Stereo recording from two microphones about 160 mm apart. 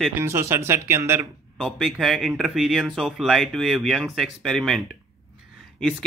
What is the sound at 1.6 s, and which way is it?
Speech, centre (ahead or behind).